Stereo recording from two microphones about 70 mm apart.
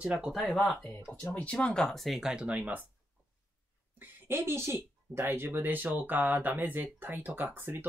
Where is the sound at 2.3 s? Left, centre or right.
Centre.